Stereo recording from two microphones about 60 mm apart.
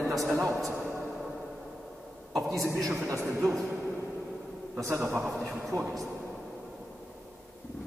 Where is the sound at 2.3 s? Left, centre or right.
Centre.